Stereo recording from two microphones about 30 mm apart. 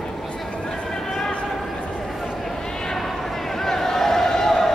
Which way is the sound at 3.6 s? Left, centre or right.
Centre.